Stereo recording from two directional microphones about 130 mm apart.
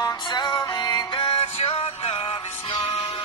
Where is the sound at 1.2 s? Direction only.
45° left (ahead or behind).